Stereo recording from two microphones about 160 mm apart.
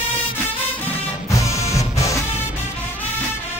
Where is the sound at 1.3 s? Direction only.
20° left (ahead or behind).